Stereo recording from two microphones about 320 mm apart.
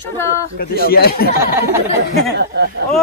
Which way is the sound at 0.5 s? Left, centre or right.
Left.